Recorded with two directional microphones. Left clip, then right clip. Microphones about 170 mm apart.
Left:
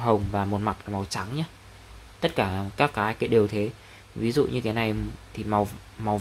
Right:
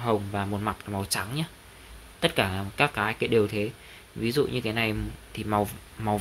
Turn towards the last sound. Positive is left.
turn(degrees=5)  # may be behind; listen again after turning